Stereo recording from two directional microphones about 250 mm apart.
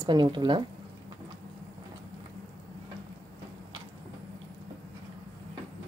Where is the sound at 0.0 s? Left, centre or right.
Centre.